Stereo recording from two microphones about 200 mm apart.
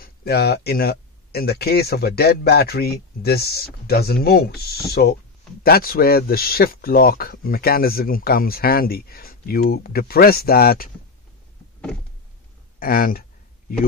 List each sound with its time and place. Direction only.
0.0 s speech: 50° left (ahead or behind)
12.7 s speech: 45° left (ahead or behind)